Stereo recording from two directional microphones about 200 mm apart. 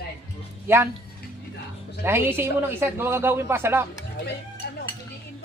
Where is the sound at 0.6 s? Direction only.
10° right (ahead or behind).